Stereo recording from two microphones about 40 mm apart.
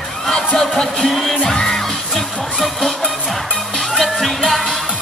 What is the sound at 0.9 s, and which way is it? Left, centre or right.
Music, centre.